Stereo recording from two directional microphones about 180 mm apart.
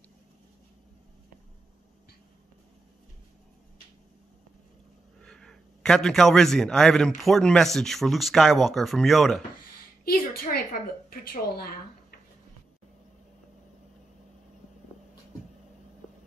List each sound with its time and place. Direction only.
5.2 s a man's voice: 5° left (ahead or behind)
10.0 s a sound: 55° left (ahead or behind)
11.1 s a woman's voice: 55° left (ahead or behind)